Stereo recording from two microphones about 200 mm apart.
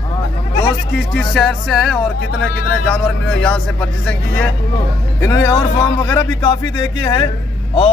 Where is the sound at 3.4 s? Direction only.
5° left (ahead or behind); by 7.9 s 25° left (ahead or behind).